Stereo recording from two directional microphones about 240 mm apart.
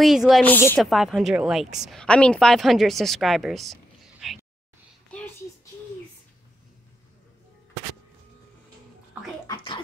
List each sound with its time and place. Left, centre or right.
0.0 s a woman's voice: centre
9.5 s scratching: left